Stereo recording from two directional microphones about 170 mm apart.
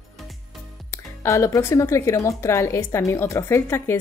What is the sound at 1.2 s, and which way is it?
Speech, 15° left (ahead or behind).